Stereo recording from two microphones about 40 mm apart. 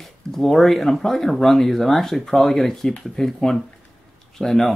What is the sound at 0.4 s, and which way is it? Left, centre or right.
Speech, centre.